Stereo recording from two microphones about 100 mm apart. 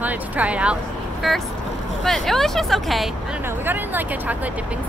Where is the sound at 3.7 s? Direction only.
20° right (ahead or behind).